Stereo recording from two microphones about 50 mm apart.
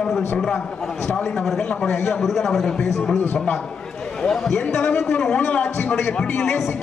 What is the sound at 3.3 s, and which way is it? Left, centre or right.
Speech, left.